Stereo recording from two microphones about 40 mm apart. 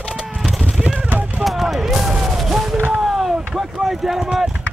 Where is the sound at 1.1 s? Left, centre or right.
Right.